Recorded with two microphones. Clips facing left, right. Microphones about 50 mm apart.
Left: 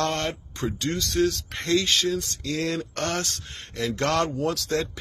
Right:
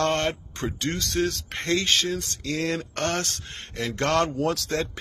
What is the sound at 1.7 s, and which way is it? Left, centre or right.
Mantra, right.